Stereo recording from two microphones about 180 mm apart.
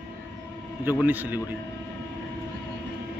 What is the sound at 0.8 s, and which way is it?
Speech, 10° right (ahead or behind).